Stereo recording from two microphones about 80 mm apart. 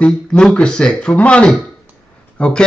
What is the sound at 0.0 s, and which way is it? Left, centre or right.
Speech, centre.